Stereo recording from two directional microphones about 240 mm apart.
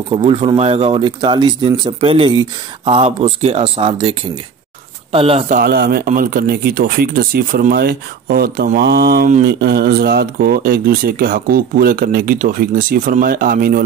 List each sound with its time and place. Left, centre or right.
0.1 s speech: right
5.1 s speech: right
5.6 s speech: right